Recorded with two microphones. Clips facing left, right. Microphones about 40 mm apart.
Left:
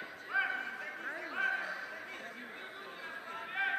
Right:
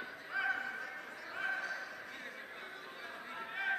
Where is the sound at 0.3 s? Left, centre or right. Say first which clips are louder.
Left 4 dB; left.